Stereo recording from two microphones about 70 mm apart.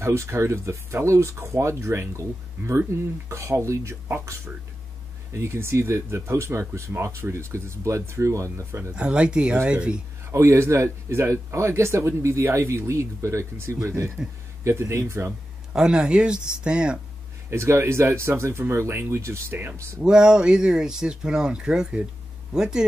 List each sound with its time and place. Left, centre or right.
0.0 s speech: right
8.9 s speech: centre
10.3 s speech: right
15.7 s speech: centre
17.5 s speech: right
20.1 s speech: centre